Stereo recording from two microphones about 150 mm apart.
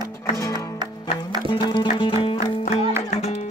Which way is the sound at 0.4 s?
20° left (ahead or behind).